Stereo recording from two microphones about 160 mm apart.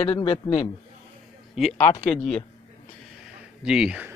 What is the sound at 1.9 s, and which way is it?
Speech, 50° left (ahead or behind).